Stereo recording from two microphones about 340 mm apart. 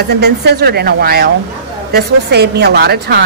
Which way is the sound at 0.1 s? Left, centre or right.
Right.